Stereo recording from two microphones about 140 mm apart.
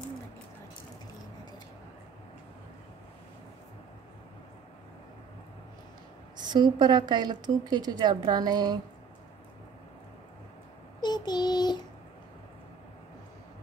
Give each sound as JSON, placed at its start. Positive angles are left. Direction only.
{"t": 6.3, "sound": "a woman's voice", "side_deg": -30}
{"t": 11.0, "sound": "child singing", "side_deg": 30}